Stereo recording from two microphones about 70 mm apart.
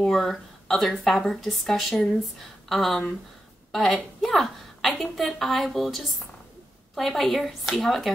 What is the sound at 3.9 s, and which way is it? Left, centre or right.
A woman's voice, centre.